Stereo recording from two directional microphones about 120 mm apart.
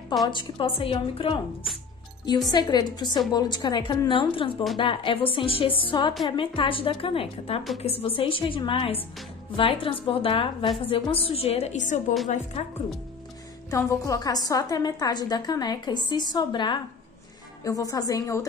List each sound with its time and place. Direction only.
0.3 s speech: 45° left (ahead or behind)
2.5 s a woman's voice: 35° left (ahead or behind); by 12.0 s 90° left
12.3 s speech: 70° left (ahead or behind)
13.7 s a woman's voice: 25° left (ahead or behind)
17.6 s a woman's voice: 30° left (ahead or behind)